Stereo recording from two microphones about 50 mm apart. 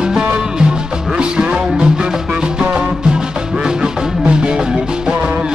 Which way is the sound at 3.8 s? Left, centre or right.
Centre.